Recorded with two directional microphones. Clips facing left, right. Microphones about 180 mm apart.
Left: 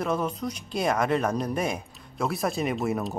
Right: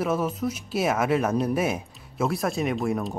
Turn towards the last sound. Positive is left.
turn(degrees=0)  # may be behind; listen again after turning